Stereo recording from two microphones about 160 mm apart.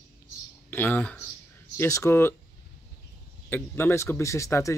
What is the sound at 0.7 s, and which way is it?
Speech, 10° left (ahead or behind).